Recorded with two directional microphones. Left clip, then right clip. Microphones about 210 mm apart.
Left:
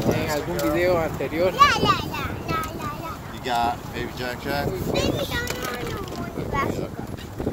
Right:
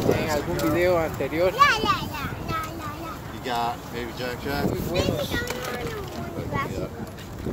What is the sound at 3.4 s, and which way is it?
Speech, 55° left (ahead or behind).